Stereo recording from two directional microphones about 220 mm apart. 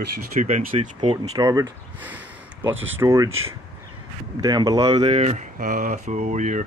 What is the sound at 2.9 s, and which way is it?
Speech, 15° right (ahead or behind).